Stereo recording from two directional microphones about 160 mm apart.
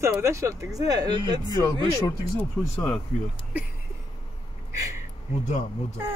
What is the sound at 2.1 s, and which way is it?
Speech, 20° left (ahead or behind).